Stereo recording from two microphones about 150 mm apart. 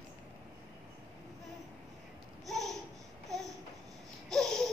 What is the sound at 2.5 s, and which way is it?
Babbling, centre (ahead or behind).